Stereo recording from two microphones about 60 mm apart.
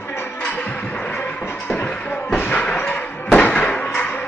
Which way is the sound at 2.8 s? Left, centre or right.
Left.